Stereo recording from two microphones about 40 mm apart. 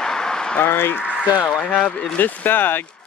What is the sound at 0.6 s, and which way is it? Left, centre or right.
Speech, left.